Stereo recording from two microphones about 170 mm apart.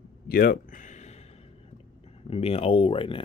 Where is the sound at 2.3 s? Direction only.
35° left (ahead or behind).